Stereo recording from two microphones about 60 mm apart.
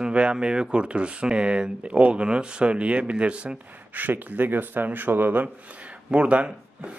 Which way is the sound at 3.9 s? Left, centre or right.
Right.